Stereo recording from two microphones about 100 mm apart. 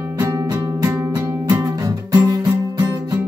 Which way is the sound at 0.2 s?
30° right (ahead or behind).